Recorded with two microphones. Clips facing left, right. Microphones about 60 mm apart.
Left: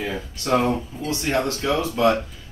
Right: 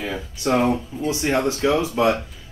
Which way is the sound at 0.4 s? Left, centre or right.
Centre.